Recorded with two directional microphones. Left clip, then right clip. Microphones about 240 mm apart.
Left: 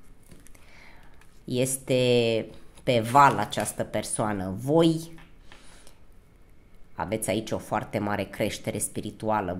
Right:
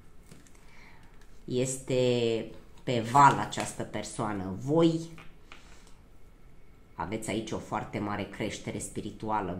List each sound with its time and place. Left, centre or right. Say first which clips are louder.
1.4 s speech: left 3 dB; left
7.0 s speech: left 6 dB; left